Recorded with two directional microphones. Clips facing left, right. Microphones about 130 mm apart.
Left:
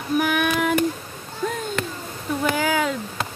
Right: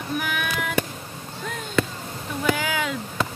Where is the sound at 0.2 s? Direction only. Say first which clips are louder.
Left 7 dB; 45° left (ahead or behind).